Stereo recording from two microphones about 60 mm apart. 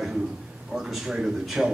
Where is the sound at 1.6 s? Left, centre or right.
Centre.